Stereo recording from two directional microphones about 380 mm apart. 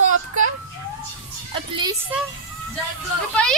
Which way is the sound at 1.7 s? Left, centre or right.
Centre.